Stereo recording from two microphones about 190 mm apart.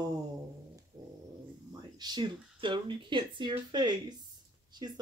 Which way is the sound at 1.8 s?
20° right (ahead or behind).